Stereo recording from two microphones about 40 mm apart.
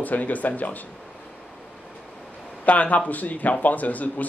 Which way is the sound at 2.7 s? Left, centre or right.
Left.